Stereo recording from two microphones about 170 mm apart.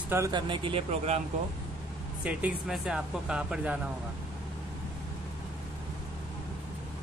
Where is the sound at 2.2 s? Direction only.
5° right (ahead or behind).